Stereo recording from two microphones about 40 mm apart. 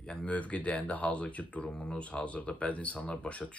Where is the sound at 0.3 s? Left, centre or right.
Left.